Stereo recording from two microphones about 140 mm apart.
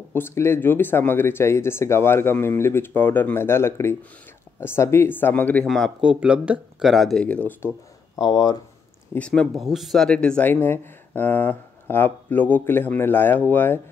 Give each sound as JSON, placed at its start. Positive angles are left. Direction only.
{"t": 0.1, "sound": "speech", "side_deg": 15}
{"t": 5.7, "sound": "speech", "side_deg": 0}
{"t": 8.2, "sound": "speech", "side_deg": 25}
{"t": 9.1, "sound": "speech", "side_deg": 10}